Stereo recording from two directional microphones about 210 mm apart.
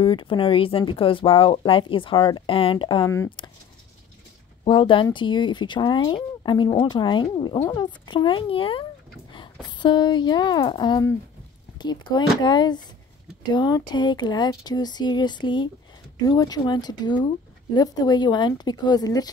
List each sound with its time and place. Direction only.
0.0 s speech: 25° left (ahead or behind)
4.6 s speech: 25° left (ahead or behind)